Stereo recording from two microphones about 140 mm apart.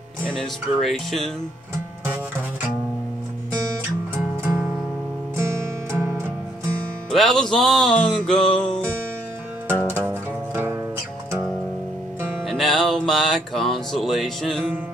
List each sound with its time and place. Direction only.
0.3 s music: 5° left (ahead or behind)
4.4 s music: 15° right (ahead or behind)
7.1 s music: centre (ahead or behind)
9.7 s music: 15° right (ahead or behind)
12.4 s music: centre (ahead or behind)